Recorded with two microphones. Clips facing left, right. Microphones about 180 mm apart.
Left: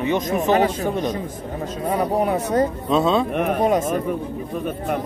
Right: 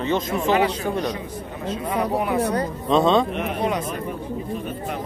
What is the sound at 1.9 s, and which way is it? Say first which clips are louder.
Speech: left 3 dB; 40° left (ahead or behind).